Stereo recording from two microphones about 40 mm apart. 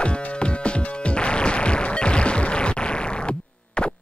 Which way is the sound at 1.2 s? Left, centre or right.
Left.